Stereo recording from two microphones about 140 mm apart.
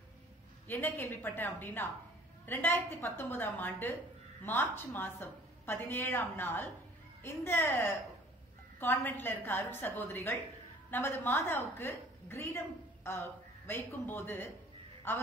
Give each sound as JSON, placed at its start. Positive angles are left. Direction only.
{"t": 0.7, "sound": "a woman's voice", "side_deg": 15}